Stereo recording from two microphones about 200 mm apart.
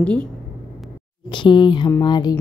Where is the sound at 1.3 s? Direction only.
25° left (ahead or behind).